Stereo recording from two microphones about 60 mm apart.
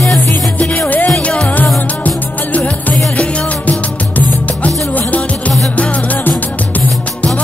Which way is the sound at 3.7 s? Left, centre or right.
Left.